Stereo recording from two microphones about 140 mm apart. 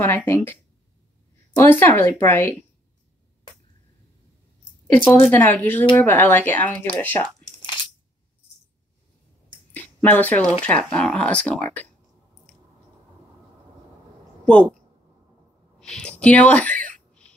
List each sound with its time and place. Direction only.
0.0 s speech: 15° left (ahead or behind)
1.6 s speech: 15° left (ahead or behind)
4.9 s speech: 15° left (ahead or behind)
7.4 s coin: 35° left (ahead or behind)
10.0 s speech: 10° left (ahead or behind)
14.4 s a woman's voice: 5° left (ahead or behind)
15.8 s a sound: 5° left (ahead or behind)